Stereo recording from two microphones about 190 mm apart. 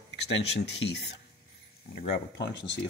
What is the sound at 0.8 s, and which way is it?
Speech, 80° left.